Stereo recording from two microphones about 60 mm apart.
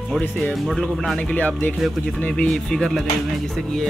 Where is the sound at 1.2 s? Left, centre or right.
Left.